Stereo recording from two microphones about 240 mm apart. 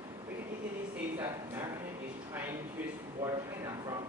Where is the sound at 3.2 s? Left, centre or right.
Centre.